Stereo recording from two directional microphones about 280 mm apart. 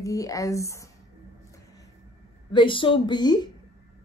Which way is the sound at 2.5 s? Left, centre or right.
Centre.